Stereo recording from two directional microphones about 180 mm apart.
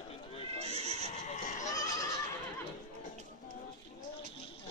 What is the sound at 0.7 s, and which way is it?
Neigh, 35° right (ahead or behind).